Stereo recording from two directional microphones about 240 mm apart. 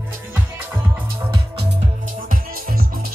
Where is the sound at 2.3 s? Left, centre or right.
Right.